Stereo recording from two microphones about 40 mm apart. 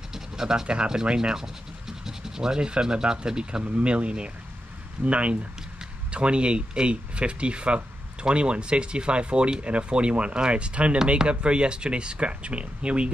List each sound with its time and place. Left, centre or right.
0.1 s speech: centre